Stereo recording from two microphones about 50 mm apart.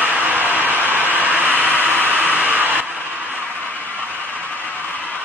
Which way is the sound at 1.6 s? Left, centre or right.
Right.